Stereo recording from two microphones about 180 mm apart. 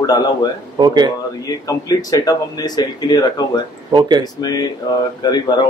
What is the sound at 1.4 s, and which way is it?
Speech, 20° left (ahead or behind).